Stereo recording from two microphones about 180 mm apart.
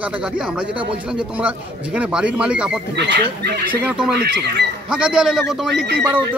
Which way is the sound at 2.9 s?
70° right (ahead or behind).